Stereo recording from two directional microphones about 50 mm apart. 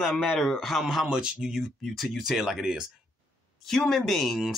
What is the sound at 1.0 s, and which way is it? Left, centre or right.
Speech, centre.